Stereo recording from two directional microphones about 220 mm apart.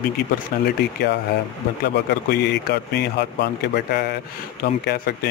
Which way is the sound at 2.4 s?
50° left (ahead or behind).